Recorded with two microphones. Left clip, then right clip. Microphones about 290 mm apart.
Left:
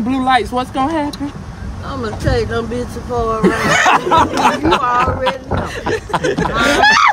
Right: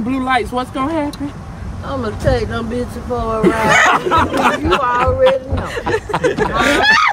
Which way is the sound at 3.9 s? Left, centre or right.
Left.